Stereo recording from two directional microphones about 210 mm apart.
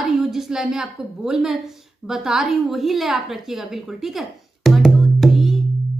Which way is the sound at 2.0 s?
Centre (ahead or behind).